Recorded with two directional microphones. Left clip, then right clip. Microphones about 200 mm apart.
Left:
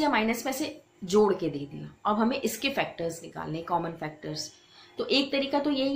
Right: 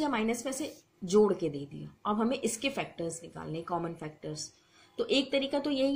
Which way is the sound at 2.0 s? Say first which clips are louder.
Left 4 dB; 25° right (ahead or behind).